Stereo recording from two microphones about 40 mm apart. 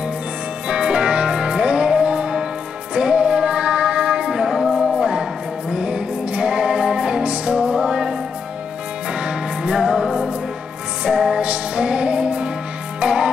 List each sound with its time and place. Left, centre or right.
0.7 s music: right
4.3 s music: centre
5.1 s music: right